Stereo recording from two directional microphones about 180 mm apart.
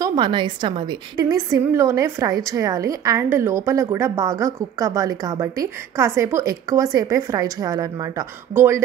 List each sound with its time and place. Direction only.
0.0 s a woman's voice: 25° right (ahead or behind)